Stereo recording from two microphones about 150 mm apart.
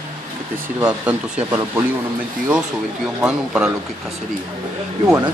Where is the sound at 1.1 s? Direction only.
15° right (ahead or behind).